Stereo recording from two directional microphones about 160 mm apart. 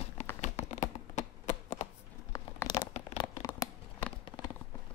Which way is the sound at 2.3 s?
20° left (ahead or behind).